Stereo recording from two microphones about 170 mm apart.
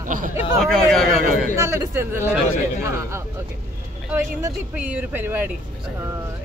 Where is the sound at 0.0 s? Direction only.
50° right (ahead or behind).